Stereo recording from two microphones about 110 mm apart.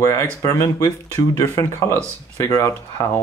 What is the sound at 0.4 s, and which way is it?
Speech, 30° left (ahead or behind).